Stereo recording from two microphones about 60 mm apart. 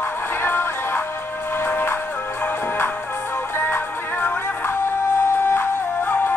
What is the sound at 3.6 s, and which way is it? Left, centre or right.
Music, left.